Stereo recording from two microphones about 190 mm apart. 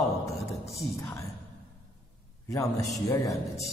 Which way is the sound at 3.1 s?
15° left (ahead or behind).